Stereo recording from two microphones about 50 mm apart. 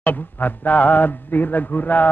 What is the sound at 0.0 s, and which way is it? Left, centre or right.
A man's voice, left.